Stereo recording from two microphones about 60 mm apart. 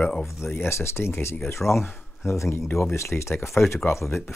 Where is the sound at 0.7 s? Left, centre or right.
Left.